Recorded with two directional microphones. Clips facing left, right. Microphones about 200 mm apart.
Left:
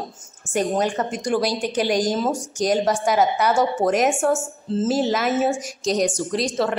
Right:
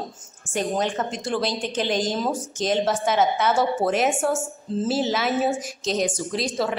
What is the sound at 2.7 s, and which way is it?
A woman's voice, 5° right (ahead or behind).